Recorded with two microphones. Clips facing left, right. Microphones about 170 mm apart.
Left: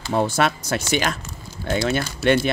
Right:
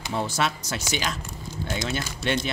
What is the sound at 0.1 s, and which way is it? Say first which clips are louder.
Speech: left 7 dB; 55° left (ahead or behind).